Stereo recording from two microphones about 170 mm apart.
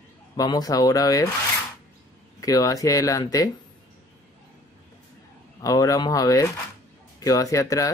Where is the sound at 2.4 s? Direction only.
20° left (ahead or behind).